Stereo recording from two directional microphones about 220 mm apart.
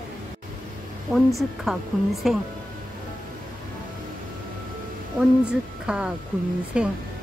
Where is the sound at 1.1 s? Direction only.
Centre (ahead or behind).